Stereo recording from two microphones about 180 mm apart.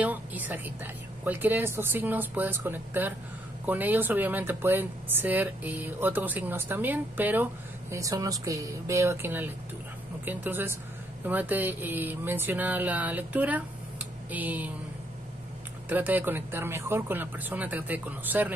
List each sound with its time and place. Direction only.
0.0 s speech: 10° right (ahead or behind)
15.9 s speech: 10° right (ahead or behind)